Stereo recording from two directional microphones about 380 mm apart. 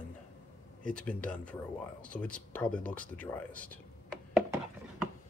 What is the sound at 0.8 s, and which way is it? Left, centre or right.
Speech, centre.